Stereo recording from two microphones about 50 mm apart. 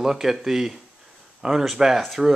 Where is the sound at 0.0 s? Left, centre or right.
Centre.